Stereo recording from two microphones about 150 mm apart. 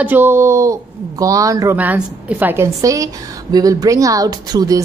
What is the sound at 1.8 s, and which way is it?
A woman's voice, 10° right (ahead or behind).